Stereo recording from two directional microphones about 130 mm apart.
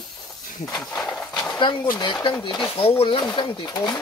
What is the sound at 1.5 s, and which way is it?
Speech, 30° left (ahead or behind).